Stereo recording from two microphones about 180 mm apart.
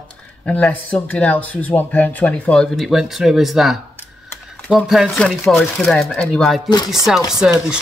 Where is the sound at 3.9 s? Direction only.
10° left (ahead or behind).